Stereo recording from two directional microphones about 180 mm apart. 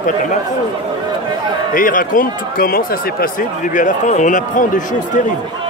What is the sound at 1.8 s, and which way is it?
Speech, 50° left (ahead or behind).